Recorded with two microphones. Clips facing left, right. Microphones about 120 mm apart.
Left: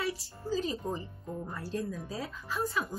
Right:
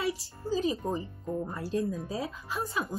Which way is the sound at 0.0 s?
15° right (ahead or behind).